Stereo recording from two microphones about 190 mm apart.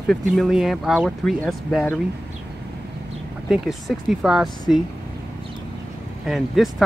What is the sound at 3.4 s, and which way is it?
Speech, 5° right (ahead or behind).